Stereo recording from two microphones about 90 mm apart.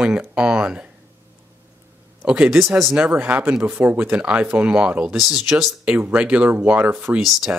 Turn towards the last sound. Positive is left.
turn(degrees=0)  # may be behind; listen again after turning